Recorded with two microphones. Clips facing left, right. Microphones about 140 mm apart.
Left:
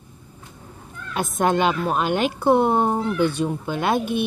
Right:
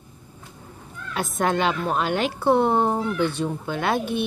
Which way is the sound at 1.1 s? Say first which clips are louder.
Left 3 dB; 20° left (ahead or behind).